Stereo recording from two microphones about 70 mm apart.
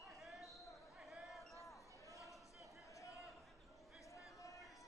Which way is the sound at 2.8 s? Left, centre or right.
Left.